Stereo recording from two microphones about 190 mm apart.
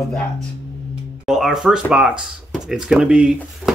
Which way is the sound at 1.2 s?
5° right (ahead or behind).